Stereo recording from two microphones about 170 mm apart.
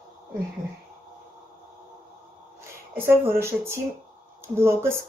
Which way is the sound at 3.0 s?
15° right (ahead or behind).